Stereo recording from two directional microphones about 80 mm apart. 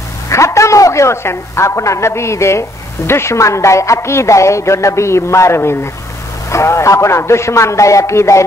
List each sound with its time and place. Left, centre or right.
0.3 s a man's voice: left